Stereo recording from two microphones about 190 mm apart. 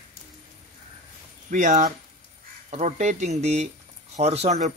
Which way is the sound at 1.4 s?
40° right (ahead or behind).